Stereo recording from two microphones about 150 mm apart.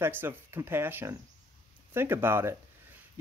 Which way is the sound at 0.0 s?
15° right (ahead or behind).